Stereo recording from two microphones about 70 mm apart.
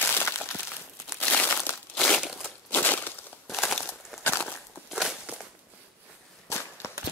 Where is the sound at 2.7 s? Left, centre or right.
Left.